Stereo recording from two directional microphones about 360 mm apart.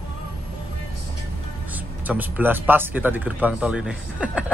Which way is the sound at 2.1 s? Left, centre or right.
Centre.